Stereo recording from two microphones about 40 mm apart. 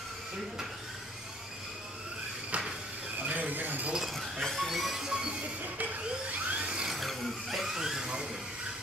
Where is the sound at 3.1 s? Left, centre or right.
Right.